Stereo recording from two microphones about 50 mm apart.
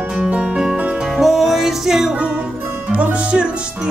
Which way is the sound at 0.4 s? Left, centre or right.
Centre.